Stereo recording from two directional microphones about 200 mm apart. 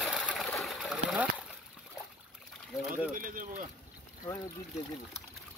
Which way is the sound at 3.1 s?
45° right (ahead or behind).